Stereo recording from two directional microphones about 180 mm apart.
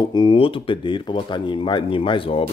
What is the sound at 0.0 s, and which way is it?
Speech, 25° left (ahead or behind).